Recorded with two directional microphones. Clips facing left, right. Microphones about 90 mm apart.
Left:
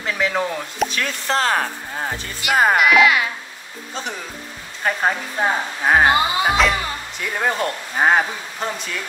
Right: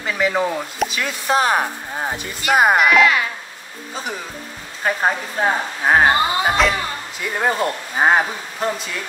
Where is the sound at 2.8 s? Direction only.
5° left (ahead or behind).